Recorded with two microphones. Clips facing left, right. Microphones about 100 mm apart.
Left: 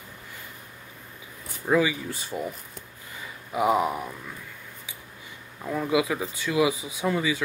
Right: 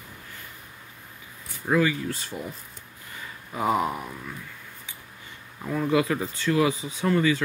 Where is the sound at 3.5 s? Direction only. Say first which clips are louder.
Left 2 dB; 10° left (ahead or behind).